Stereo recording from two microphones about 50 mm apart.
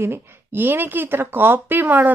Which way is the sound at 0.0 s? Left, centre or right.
Right.